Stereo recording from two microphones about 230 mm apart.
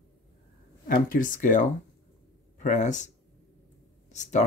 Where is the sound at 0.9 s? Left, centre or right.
Left.